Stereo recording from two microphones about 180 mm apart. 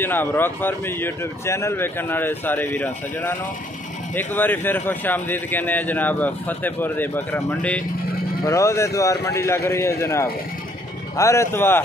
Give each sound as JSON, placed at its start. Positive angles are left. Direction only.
{"t": 0.0, "sound": "a man's voice", "side_deg": 10}